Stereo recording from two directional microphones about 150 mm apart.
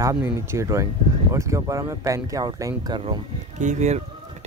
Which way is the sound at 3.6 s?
50° right (ahead or behind).